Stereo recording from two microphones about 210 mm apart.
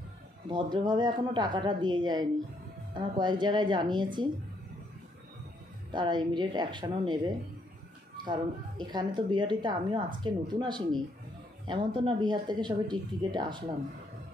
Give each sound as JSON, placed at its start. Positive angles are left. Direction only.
{"t": 0.5, "sound": "speech", "side_deg": -20}
{"t": 5.9, "sound": "speech", "side_deg": -20}